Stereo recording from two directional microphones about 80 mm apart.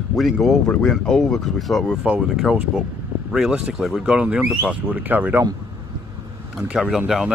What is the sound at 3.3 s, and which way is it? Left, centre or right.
Speech, centre.